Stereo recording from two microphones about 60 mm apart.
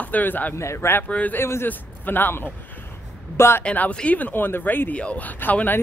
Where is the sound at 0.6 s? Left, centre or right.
Left.